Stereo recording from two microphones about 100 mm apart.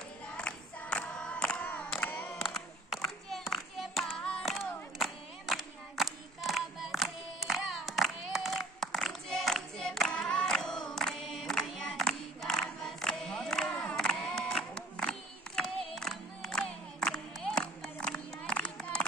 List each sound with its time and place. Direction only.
0.3 s child singing: 10° left (ahead or behind)
2.0 s a sound: 15° left (ahead or behind)
2.4 s child singing: centre (ahead or behind)
4.4 s crowd: centre (ahead or behind)